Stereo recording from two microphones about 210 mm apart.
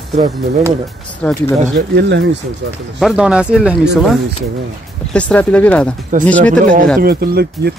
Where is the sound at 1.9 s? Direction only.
55° right (ahead or behind).